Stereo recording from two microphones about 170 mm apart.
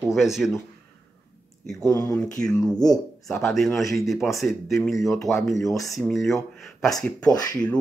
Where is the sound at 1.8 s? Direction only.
20° left (ahead or behind).